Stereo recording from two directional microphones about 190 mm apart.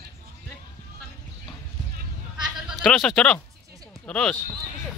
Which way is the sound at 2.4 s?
Centre (ahead or behind).